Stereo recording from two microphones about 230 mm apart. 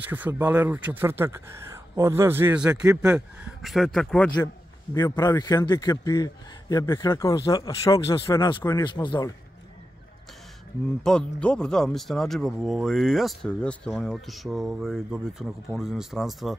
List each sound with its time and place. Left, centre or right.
0.1 s speech: centre
4.9 s a man's voice: centre
11.1 s speech: centre